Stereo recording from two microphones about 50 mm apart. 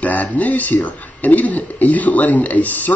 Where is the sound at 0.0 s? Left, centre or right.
Left.